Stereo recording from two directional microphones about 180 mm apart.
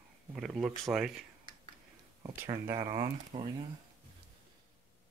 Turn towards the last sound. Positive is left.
turn(degrees=-30)  # may be behind; listen again after turning